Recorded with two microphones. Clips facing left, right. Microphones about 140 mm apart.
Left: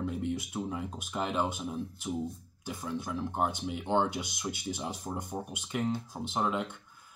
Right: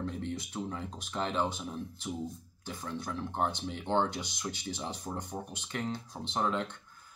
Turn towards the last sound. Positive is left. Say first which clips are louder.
# left 1 dB
turn(degrees=5)  # may be behind; listen again after turning